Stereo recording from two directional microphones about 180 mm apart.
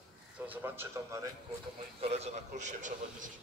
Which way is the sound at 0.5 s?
10° right (ahead or behind).